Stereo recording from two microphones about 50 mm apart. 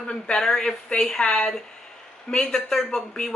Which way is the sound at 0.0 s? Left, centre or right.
Centre.